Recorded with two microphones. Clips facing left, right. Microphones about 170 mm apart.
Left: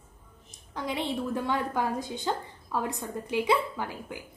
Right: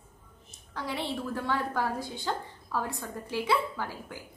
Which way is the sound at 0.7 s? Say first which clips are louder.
Left 3 dB; 15° left (ahead or behind).